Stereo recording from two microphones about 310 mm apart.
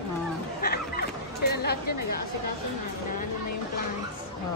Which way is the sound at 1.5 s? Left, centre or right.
Left.